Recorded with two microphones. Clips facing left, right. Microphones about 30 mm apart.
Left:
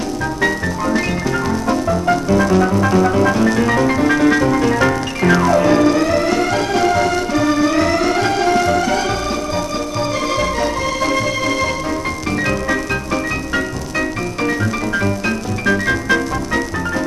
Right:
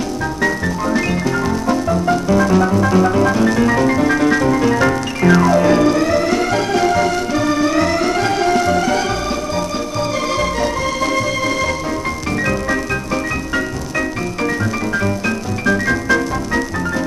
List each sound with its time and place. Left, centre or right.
1.7 s music: centre
15.2 s music: left